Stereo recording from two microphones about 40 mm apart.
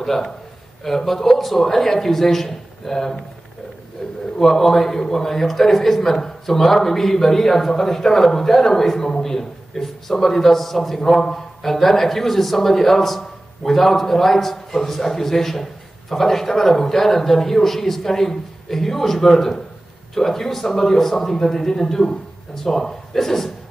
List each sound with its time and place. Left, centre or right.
0.0 s a man's voice: centre